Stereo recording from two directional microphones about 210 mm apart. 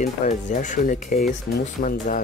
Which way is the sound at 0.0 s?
35° left (ahead or behind).